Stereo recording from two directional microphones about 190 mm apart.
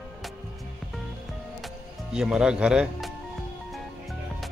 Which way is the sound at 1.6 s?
5° right (ahead or behind).